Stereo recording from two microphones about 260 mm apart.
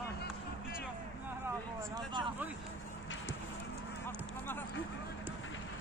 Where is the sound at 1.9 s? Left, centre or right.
Centre.